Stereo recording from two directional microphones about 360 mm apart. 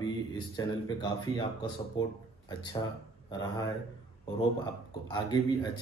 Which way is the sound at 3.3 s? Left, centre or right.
Centre.